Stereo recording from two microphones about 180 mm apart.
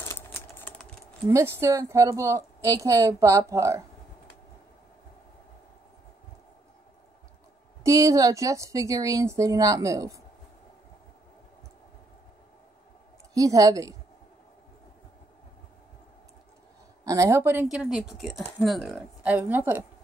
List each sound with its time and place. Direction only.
0.0 s typing: 15° left (ahead or behind)
1.3 s speech: 15° right (ahead or behind)
7.8 s speech: 20° right (ahead or behind)
13.3 s a woman's voice: 20° right (ahead or behind)
17.0 s speech: 15° right (ahead or behind)